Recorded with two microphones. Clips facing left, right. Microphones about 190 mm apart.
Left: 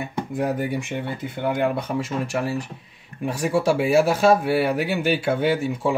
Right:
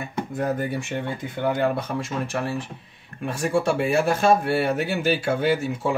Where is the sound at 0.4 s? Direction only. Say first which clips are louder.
Left 1 dB; 15° left (ahead or behind).